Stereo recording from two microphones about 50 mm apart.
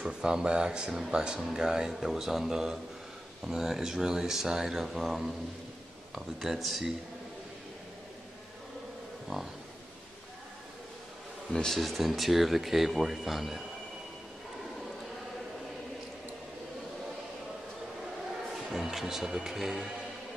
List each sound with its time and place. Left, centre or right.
0.1 s speech: centre
9.3 s speech: centre
11.5 s speech: centre
18.7 s speech: centre